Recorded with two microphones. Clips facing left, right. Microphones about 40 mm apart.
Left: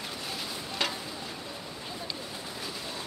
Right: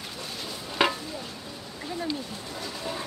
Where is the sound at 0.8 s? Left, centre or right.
Right.